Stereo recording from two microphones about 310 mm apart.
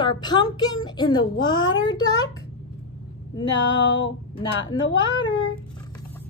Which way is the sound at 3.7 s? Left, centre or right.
Left.